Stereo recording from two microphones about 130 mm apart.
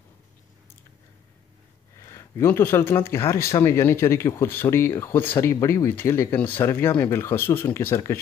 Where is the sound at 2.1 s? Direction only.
20° left (ahead or behind).